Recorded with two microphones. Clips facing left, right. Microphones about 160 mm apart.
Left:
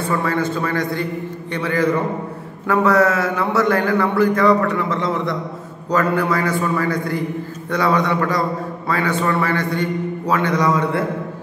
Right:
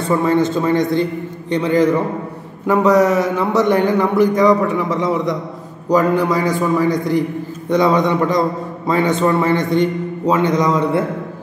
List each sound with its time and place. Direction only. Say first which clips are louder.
0.1 s a man's voice: right 7 dB; 20° right (ahead or behind)